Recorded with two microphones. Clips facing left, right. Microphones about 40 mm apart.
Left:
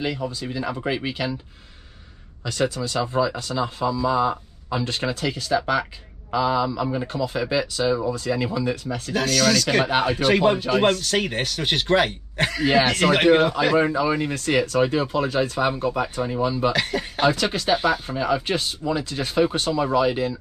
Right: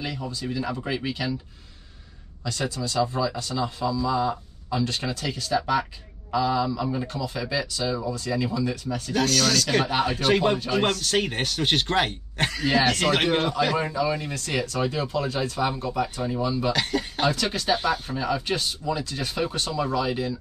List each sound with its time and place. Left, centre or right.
0.0 s speech: left
2.4 s speech: left
5.2 s speech: left
7.1 s speech: left
9.1 s speech: centre
9.8 s speech: centre
12.6 s speech: left
13.0 s speech: centre
13.7 s speech: left
15.7 s speech: left
16.7 s speech: centre
17.3 s speech: left